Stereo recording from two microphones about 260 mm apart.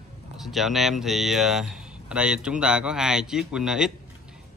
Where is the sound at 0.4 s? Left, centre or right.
Centre.